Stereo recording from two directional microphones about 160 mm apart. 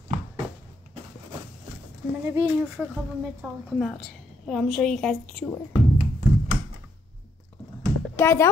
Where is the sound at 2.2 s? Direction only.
15° right (ahead or behind).